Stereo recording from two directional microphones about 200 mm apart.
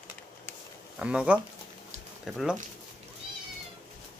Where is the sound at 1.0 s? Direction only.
5° right (ahead or behind).